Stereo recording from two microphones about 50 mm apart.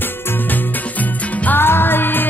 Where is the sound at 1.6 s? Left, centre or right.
Left.